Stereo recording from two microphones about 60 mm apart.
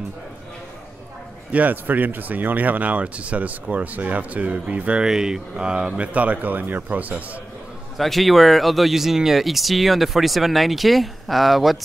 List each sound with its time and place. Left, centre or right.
1.5 s speech: right
5.0 s speech: centre; by 7.2 s right
8.0 s speech: centre